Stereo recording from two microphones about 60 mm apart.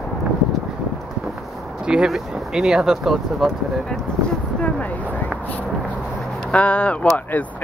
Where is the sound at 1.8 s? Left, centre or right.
Centre.